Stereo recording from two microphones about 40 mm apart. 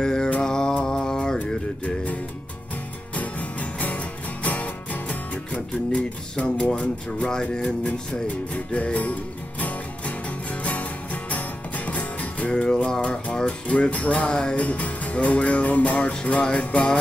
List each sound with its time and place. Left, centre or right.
0.0 s mantra: centre
3.2 s music: left
5.5 s music: left
6.6 s speech: left
8.3 s music: left
14.6 s music: left